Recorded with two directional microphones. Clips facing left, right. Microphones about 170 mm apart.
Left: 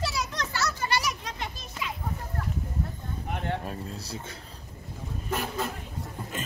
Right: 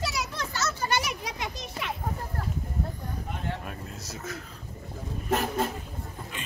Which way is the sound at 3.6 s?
30° left (ahead or behind).